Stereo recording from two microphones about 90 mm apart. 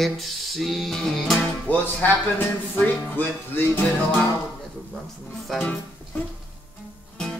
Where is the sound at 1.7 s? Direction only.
20° left (ahead or behind).